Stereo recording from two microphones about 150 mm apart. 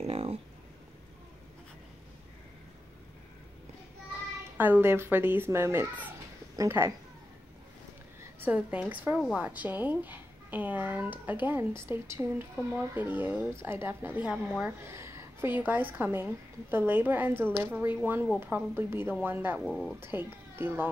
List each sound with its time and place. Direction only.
0.0 s a sound: 40° right (ahead or behind)
4.6 s speech: 10° right (ahead or behind)
8.2 s a woman's voice: 10° right (ahead or behind)
14.9 s speech: 20° right (ahead or behind)
19.6 s speech: centre (ahead or behind)
20.0 s speech: 15° right (ahead or behind)